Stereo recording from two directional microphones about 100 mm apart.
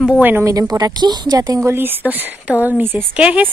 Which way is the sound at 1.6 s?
25° right (ahead or behind).